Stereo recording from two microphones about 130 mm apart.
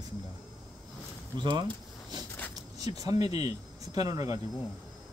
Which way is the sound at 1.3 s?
35° right (ahead or behind).